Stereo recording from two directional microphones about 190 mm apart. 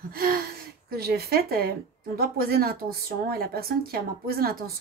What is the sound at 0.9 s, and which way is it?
A woman's voice, 55° right (ahead or behind).